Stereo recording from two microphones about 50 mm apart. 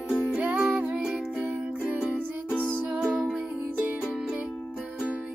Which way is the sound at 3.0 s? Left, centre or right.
Centre.